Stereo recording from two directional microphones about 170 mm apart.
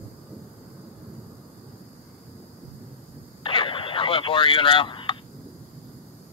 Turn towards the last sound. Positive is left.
turn(degrees=30)  # may be behind; listen again after turning